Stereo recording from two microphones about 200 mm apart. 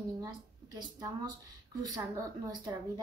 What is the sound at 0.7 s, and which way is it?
Speech, 20° right (ahead or behind).